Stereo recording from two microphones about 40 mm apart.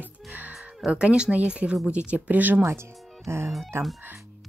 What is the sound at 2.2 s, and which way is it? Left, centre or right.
Speech, right.